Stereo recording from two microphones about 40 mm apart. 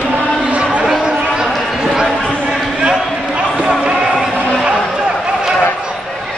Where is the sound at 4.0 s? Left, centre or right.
Centre.